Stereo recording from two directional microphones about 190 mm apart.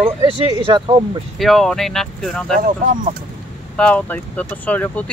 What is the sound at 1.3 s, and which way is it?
Speech, centre (ahead or behind).